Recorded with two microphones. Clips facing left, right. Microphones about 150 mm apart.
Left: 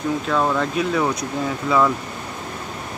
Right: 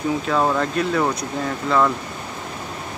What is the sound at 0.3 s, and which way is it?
Speech, 5° right (ahead or behind).